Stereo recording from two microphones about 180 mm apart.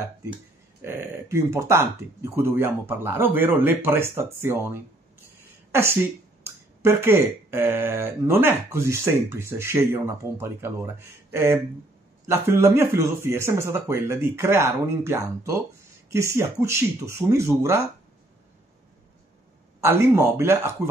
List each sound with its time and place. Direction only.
0.8 s speech: 15° right (ahead or behind)
19.8 s speech: 15° right (ahead or behind)